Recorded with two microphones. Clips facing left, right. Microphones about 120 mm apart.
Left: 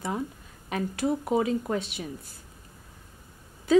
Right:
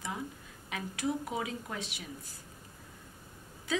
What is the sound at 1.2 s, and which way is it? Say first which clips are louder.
Speech: left 11 dB; 45° left (ahead or behind).